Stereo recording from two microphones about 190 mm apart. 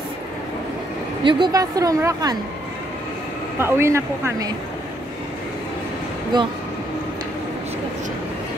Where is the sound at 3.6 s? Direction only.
15° right (ahead or behind).